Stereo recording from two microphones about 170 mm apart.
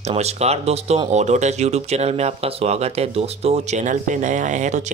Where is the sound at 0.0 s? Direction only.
40° right (ahead or behind).